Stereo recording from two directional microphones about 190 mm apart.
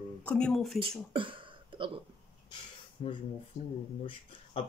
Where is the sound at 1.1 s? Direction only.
25° right (ahead or behind).